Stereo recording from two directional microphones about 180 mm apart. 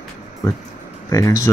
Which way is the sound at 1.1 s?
15° left (ahead or behind).